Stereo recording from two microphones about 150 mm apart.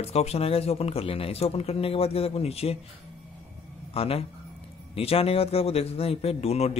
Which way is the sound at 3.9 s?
40° left (ahead or behind).